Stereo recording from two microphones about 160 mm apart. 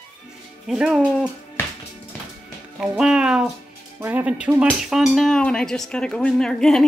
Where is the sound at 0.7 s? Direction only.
5° right (ahead or behind).